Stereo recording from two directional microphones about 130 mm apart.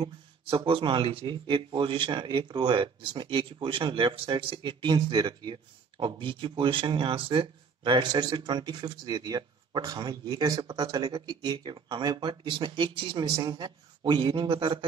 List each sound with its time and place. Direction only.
0.0 s speech: 40° right (ahead or behind)